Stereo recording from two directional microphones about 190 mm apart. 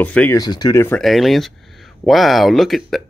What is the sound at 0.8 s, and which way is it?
Speech, 5° left (ahead or behind).